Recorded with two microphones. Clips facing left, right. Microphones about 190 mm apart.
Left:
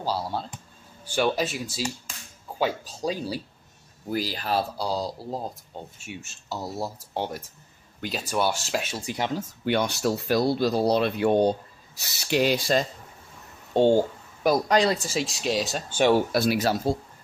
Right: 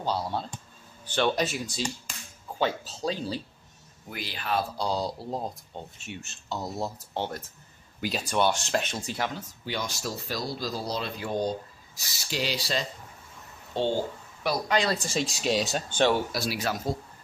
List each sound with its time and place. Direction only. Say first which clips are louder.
0.0 s speech: left 1 dB; 5° left (ahead or behind)
4.1 s speech: left 4 dB; 40° left (ahead or behind)
4.7 s speech: left 1 dB; 5° left (ahead or behind)
9.7 s speech: left 9 dB; 60° left (ahead or behind); by 14.9 s 45° left (ahead or behind)
15.0 s speech: left 1 dB; 5° left (ahead or behind)
16.3 s speech: left 8 dB; 55° left (ahead or behind)
16.6 s speech: left 6 dB; 30° left (ahead or behind)